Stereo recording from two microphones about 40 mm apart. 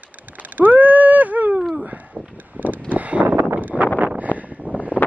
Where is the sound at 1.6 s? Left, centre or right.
Centre.